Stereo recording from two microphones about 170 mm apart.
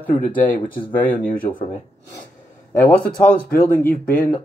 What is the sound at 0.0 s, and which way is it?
Speech, 10° left (ahead or behind).